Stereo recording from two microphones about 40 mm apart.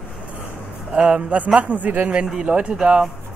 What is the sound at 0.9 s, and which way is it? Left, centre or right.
A man's voice, right.